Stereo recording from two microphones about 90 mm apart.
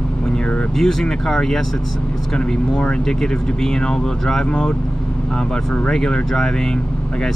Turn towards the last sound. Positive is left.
turn(degrees=5)  # may be behind; listen again after turning